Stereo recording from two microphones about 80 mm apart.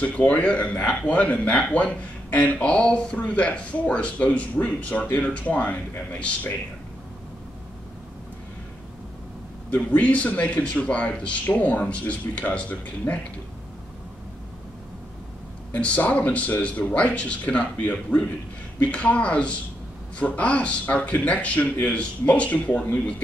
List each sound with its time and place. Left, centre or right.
0.0 s speech: centre
9.7 s speech: centre
15.7 s speech: centre